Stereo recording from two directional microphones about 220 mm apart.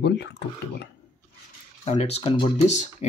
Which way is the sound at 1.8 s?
30° left (ahead or behind).